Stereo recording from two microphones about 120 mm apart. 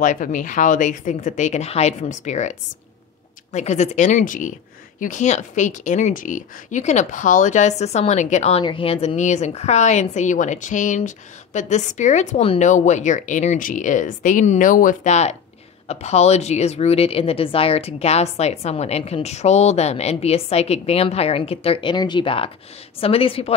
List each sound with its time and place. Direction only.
0.0 s speech: 90° left
3.5 s a woman's voice: 75° left (ahead or behind)
8.6 s a woman's voice: 50° left (ahead or behind)
9.1 s a woman's voice: 75° left (ahead or behind); by 21.9 s 50° left (ahead or behind)
21.9 s a woman's voice: 40° left (ahead or behind)